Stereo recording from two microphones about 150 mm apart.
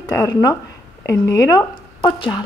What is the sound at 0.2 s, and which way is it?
Speech, 25° left (ahead or behind).